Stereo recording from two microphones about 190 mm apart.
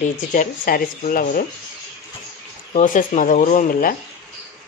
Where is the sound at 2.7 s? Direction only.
40° left (ahead or behind).